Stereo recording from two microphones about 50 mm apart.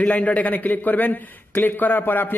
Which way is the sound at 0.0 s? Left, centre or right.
Left.